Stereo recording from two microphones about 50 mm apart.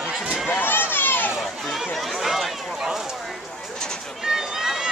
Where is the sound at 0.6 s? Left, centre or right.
Left.